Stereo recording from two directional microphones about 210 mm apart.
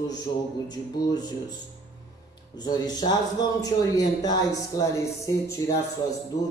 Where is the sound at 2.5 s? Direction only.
20° left (ahead or behind).